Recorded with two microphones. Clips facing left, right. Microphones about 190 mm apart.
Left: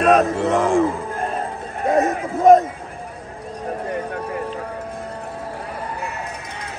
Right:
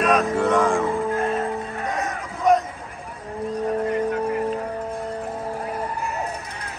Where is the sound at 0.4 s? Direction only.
Centre (ahead or behind).